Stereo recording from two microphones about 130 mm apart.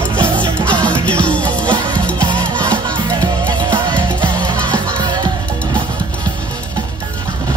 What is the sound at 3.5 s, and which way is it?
Music, 35° right (ahead or behind).